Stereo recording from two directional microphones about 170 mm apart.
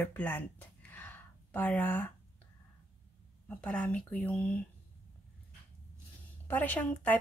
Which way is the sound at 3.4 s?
10° left (ahead or behind).